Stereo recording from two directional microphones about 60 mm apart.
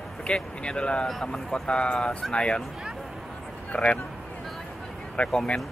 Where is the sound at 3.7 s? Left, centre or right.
Left.